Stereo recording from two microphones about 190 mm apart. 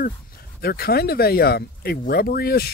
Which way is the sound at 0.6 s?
55° left (ahead or behind).